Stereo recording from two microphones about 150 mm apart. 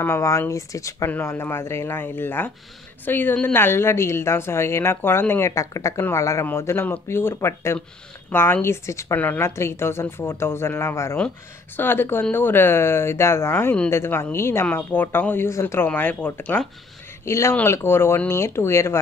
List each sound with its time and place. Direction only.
0.0 s speech: 20° left (ahead or behind)